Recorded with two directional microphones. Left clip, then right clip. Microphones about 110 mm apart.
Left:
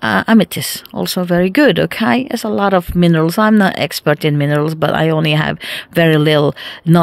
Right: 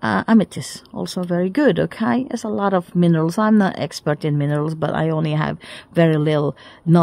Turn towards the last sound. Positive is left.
turn(degrees=20)  # may be behind; listen again after turning